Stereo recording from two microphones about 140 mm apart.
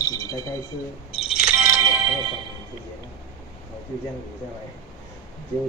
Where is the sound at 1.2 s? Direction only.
5° right (ahead or behind).